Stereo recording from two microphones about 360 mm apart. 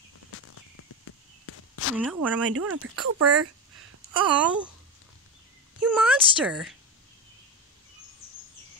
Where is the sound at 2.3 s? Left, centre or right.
Right.